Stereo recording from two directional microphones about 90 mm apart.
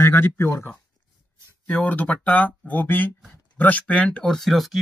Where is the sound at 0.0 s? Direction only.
30° left (ahead or behind).